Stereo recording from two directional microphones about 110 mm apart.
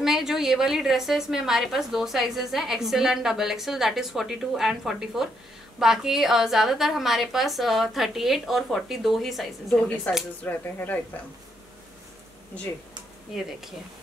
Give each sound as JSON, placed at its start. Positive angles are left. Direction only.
{"t": 0.0, "sound": "a woman's voice", "side_deg": -5}
{"t": 10.4, "sound": "speech", "side_deg": 15}